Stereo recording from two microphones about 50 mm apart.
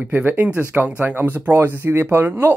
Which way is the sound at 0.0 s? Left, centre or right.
Right.